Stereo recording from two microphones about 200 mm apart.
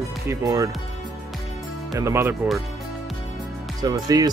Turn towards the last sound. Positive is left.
turn(degrees=-20)  # may be behind; listen again after turning